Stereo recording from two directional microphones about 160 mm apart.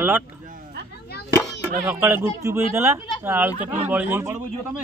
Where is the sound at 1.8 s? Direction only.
10° right (ahead or behind).